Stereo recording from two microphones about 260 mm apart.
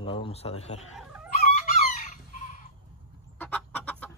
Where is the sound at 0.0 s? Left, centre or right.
Centre.